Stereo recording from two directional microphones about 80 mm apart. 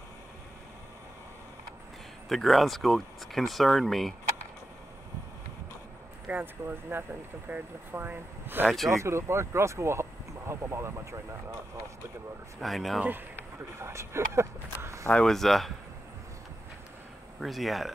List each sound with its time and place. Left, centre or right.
2.2 s speech: centre
6.2 s speech: right
8.6 s speech: centre
8.9 s speech: right
12.5 s speech: centre
13.7 s a sound: right
15.1 s speech: centre
17.4 s speech: centre